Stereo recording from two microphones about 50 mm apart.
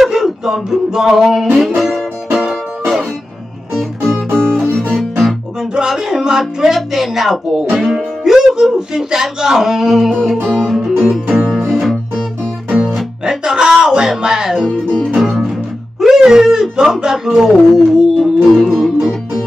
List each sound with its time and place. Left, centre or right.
0.0 s music: centre
3.7 s music: centre
4.3 s music: right
5.8 s speech: centre
10.9 s music: centre
11.7 s music: centre
12.6 s music: centre
16.0 s a sound: centre
17.0 s speech: centre
18.6 s music: centre